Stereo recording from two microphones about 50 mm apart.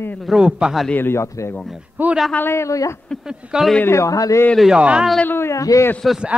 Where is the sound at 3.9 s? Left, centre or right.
Left.